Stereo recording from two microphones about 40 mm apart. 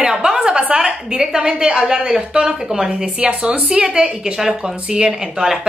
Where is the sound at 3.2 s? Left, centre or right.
Right.